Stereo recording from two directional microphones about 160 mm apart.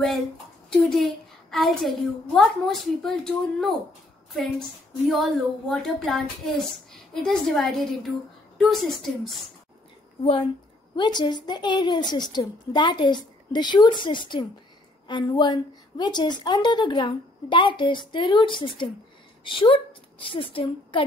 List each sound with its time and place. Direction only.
0.7 s a woman's voice: centre (ahead or behind)
11.0 s a woman's voice: 30° left (ahead or behind)